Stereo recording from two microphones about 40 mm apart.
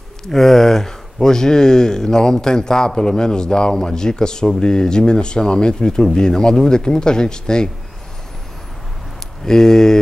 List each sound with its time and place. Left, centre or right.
0.3 s speech: centre
9.4 s speech: centre